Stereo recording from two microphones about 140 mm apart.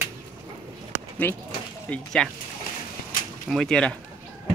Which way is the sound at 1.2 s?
15° left (ahead or behind).